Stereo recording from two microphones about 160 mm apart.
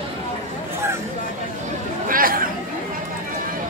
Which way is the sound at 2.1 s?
60° right (ahead or behind).